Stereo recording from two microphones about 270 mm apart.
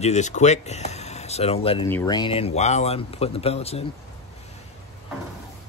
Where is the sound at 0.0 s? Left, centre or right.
Left.